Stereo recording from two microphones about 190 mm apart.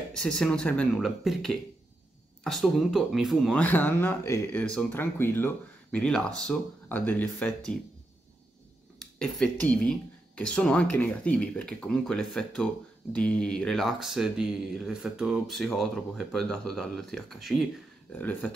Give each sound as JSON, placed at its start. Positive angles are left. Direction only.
{"t": 0.1, "sound": "speech", "side_deg": 5}
{"t": 9.0, "sound": "speech", "side_deg": 5}